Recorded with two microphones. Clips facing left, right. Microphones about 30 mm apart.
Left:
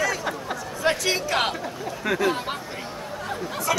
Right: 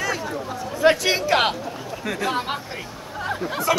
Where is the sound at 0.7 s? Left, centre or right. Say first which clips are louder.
Right 6 dB; centre.